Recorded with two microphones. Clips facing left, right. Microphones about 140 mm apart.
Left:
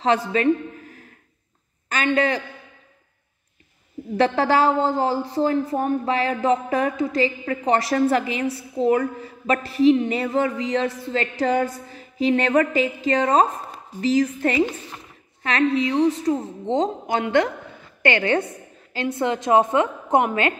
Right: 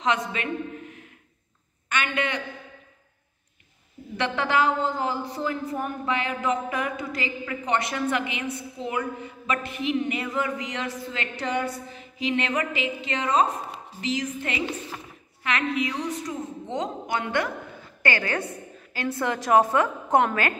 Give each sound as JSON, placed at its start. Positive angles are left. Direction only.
{"t": 0.0, "sound": "a woman's voice", "side_deg": 35}
{"t": 1.9, "sound": "a man's voice", "side_deg": 35}
{"t": 4.2, "sound": "a woman's voice", "side_deg": 35}